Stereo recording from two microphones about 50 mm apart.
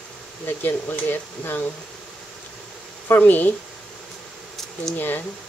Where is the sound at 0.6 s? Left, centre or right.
Left.